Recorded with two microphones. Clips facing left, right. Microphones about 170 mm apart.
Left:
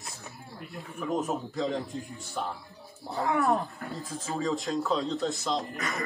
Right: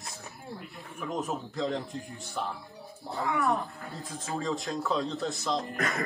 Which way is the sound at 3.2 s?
40° left (ahead or behind).